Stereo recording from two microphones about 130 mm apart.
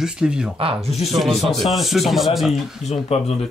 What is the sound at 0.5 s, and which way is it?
Speech, 45° right (ahead or behind).